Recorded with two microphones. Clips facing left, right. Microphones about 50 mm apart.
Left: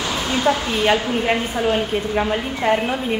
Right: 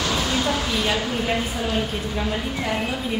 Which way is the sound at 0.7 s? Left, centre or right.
Left.